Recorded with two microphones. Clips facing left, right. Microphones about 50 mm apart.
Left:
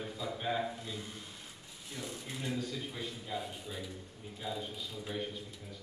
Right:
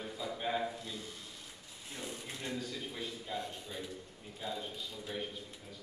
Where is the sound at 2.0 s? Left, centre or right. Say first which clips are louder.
Left 1 dB; centre.